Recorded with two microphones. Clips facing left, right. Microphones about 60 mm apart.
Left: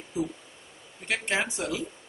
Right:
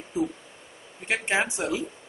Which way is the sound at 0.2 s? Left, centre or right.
Right.